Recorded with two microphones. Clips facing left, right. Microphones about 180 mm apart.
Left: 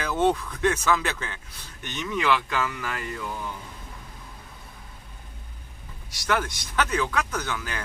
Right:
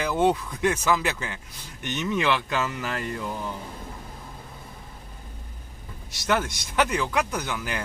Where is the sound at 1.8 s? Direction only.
20° right (ahead or behind).